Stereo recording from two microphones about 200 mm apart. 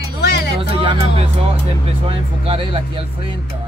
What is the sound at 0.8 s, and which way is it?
Speech, 30° right (ahead or behind).